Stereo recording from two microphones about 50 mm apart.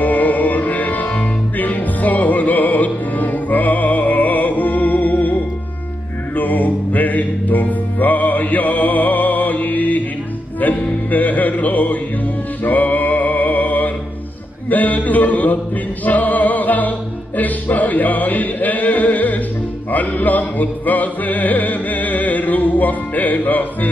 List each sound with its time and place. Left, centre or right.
0.0 s music: left